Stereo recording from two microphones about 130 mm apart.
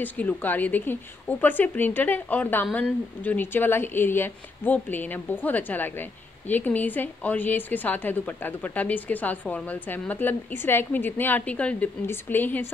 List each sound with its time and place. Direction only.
0.0 s speech: 15° left (ahead or behind)